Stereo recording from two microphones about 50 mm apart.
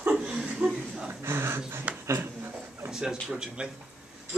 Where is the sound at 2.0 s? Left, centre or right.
Right.